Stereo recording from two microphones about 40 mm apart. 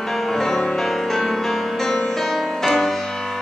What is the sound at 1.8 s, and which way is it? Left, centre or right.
Music, left.